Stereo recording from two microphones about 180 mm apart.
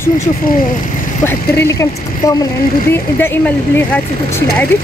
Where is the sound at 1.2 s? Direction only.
15° left (ahead or behind).